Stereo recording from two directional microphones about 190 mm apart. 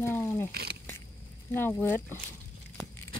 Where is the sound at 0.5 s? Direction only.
55° right (ahead or behind).